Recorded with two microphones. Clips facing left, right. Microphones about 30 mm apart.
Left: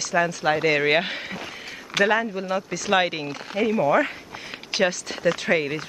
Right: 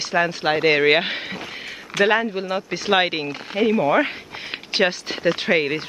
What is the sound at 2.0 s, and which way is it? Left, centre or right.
Speech, right.